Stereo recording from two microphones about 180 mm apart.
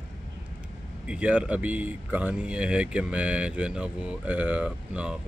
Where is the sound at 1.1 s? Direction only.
5° right (ahead or behind).